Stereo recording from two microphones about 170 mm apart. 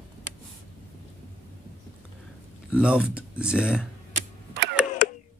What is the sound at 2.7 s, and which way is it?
Speech, 5° right (ahead or behind).